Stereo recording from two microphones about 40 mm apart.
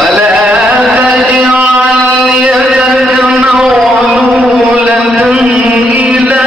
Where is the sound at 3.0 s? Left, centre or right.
Right.